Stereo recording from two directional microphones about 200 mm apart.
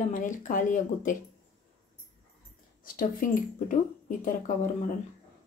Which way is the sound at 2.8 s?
45° left (ahead or behind).